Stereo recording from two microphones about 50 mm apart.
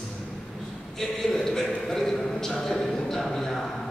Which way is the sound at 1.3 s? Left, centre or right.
Centre.